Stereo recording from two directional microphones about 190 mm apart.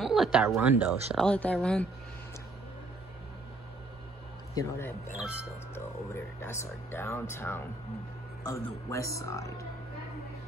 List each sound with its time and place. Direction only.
0.0 s speech: centre (ahead or behind)
1.1 s speech: 5° left (ahead or behind)
4.6 s speech: 10° left (ahead or behind)
5.1 s speech: 5° right (ahead or behind)
6.1 s speech: 15° left (ahead or behind)